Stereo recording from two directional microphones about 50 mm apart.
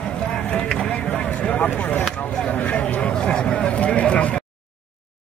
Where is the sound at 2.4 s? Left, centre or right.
Left.